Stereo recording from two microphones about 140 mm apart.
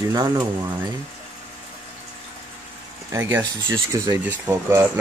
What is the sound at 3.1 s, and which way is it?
Speech, 15° right (ahead or behind).